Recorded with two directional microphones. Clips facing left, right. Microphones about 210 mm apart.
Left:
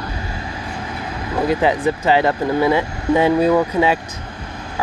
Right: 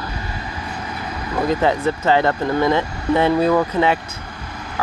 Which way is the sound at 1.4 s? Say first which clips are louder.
Left 1 dB; 10° left (ahead or behind).